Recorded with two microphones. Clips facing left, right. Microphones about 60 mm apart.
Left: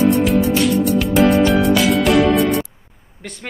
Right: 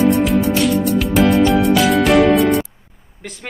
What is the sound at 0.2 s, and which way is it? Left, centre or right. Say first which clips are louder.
Music: even; centre.